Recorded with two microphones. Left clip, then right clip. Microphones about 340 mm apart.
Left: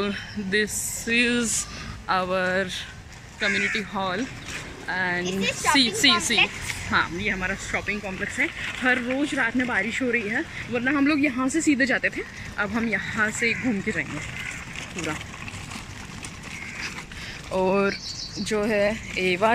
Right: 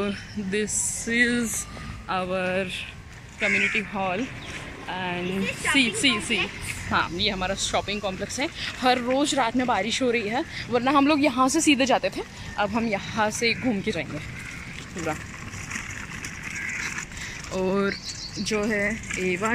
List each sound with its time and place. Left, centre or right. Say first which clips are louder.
0.0 s a woman's voice: left 1 dB; centre
17.5 s speech: left 3 dB; centre